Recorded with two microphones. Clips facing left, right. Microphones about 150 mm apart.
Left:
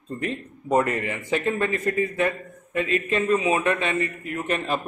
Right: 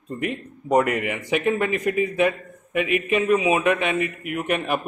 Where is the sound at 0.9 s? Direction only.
15° right (ahead or behind).